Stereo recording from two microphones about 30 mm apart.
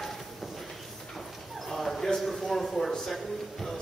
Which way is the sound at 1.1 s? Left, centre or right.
Centre.